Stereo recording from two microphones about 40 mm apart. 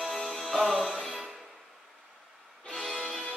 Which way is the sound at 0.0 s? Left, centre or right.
Centre.